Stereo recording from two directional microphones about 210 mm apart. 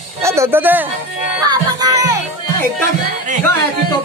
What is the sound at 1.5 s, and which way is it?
Music, 20° right (ahead or behind).